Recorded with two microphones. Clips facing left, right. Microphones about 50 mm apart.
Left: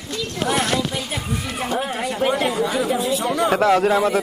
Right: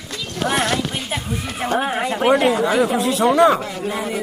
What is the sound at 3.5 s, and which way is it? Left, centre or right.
Speech, left.